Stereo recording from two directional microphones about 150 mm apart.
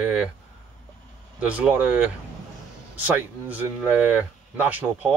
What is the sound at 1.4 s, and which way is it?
Speech, 10° right (ahead or behind).